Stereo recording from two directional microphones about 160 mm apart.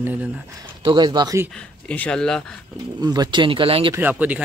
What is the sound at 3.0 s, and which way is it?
Speech, 25° right (ahead or behind).